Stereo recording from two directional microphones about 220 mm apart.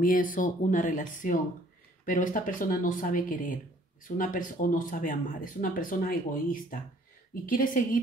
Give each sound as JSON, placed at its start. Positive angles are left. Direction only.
{"t": 0.0, "sound": "speech", "side_deg": 40}